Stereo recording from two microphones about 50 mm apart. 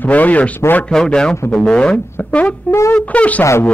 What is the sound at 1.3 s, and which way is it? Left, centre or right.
Speech, left.